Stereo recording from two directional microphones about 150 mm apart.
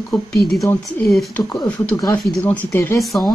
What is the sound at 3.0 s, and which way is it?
Speech, centre (ahead or behind).